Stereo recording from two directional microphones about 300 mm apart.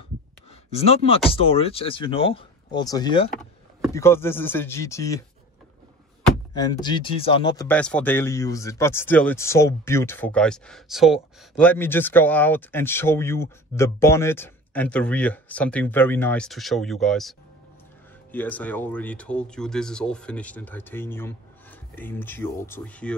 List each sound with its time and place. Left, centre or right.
0.7 s speech: centre
6.5 s speech: centre